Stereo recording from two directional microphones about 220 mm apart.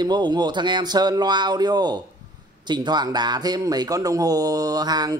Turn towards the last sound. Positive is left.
turn(degrees=-20)  # may be behind; listen again after turning